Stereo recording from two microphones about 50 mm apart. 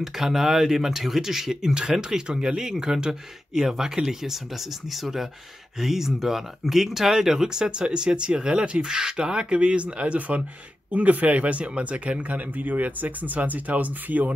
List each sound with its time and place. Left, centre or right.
0.0 s speech: centre; by 14.3 s right